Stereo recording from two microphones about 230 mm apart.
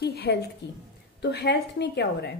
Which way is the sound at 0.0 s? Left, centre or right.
Left.